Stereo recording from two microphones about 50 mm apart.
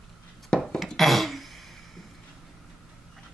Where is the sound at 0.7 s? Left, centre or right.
Centre.